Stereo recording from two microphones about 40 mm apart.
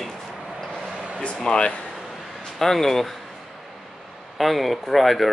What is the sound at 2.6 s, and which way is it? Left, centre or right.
Speech, centre.